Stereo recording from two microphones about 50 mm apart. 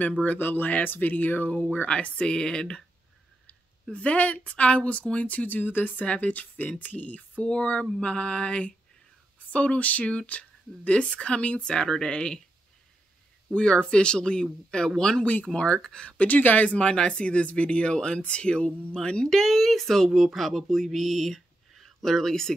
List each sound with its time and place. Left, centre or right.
0.2 s a sound: left
0.8 s speech: left; by 2.8 s centre
3.9 s speech: left
6.0 s speech: left
6.8 s a sound: left
7.4 s speech: left
11.6 s speech: centre
13.5 s speech: left
19.3 s speech: centre